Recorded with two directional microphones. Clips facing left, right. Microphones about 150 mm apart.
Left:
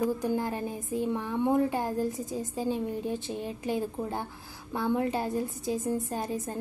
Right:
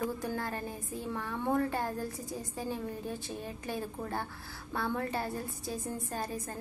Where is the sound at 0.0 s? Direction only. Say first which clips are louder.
Left 6 dB; 15° left (ahead or behind).